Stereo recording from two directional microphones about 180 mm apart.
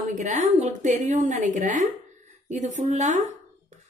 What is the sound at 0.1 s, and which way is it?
A woman's voice, 40° right (ahead or behind).